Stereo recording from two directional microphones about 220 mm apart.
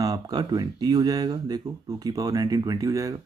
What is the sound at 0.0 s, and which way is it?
Speech, 15° right (ahead or behind).